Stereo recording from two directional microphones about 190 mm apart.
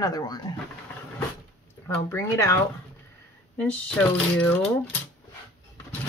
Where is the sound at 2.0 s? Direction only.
15° left (ahead or behind).